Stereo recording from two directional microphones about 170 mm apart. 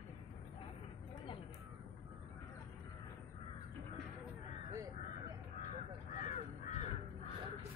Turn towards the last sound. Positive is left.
turn(degrees=55)  # may be behind; listen again after turning